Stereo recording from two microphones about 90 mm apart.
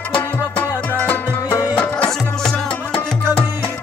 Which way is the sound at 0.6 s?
20° left (ahead or behind).